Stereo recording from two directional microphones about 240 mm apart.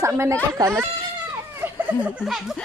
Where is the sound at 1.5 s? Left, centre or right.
Centre.